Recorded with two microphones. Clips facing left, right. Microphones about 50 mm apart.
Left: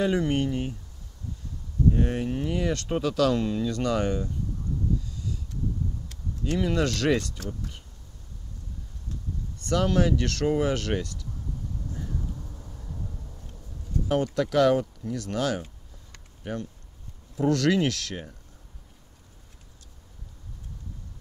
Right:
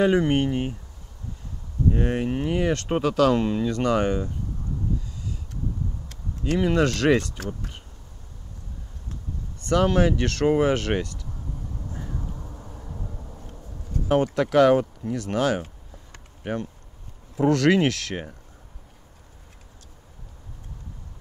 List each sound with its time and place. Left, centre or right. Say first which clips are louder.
0.0 s speech: right 5 dB; right
1.9 s speech: right 2 dB; right
6.5 s speech: right 4 dB; right
7.3 s speech: right 3 dB; right
9.6 s speech: right 4 dB; right
11.7 s vehicle: even; right
14.0 s speech: right 4 dB; right
15.6 s a sound: right 4 dB; right
17.4 s speech: right 4 dB; right